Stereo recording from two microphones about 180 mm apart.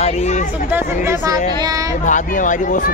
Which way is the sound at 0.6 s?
10° right (ahead or behind).